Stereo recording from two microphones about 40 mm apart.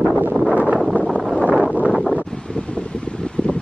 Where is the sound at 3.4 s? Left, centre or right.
Left.